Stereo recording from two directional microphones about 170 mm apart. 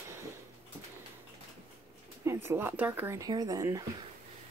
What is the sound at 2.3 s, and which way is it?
Speech, 15° right (ahead or behind).